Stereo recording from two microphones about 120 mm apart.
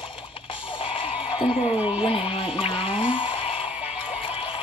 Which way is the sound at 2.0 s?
50° left (ahead or behind).